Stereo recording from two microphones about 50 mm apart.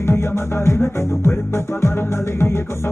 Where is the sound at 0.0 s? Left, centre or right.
Left.